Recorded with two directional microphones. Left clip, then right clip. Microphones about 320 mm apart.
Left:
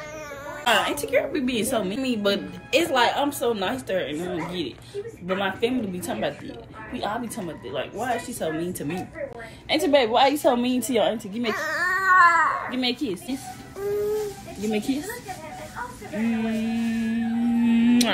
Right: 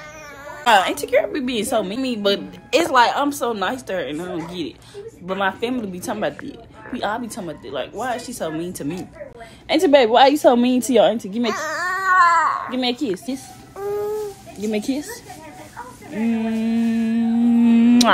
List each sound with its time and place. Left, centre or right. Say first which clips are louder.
0.7 s a woman's voice: right 6 dB; centre
9.7 s a woman's voice: right 6 dB; right
11.5 s cat: left 3 dB; centre
12.7 s a woman's voice: right 4 dB; right
14.6 s a woman's voice: right 3 dB; right
16.3 s a woman's voice: right 4 dB; centre
16.7 s music: right 6 dB; right
17.0 s singing bowl: right 6 dB; right
17.6 s singing bowl: right 5 dB; centre